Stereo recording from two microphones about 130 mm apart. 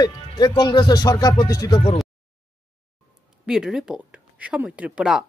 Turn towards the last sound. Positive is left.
turn(degrees=-5)  # may be behind; listen again after turning